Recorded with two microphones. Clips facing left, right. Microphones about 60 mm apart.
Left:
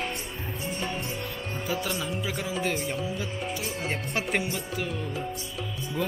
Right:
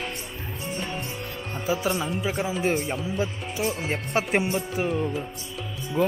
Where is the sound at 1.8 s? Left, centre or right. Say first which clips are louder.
Right 5 dB; right.